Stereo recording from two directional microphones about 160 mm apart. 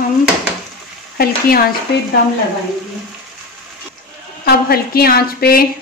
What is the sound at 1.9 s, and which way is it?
Speech, 90° left.